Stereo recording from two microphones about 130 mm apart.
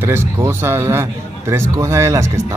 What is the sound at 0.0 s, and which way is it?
Speech, 20° right (ahead or behind).